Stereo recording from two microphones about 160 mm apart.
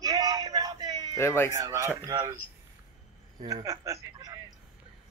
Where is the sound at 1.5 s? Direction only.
20° right (ahead or behind).